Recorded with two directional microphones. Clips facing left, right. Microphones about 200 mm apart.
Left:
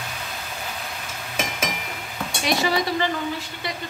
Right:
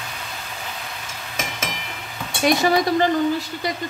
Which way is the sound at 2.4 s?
45° right (ahead or behind).